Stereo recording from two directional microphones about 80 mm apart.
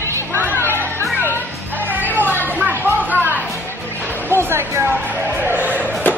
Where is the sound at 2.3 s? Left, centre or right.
Left.